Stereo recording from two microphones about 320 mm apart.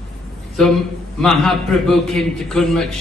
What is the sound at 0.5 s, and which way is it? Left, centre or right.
A man's voice, centre.